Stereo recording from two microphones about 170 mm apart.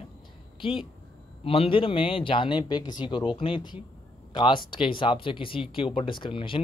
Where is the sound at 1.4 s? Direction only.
35° left (ahead or behind).